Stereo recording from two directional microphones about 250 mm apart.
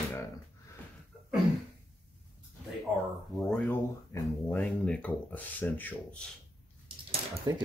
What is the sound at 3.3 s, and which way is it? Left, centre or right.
Cutlery, centre.